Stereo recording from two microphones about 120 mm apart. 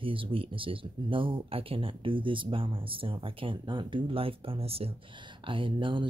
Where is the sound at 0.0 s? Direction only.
45° right (ahead or behind).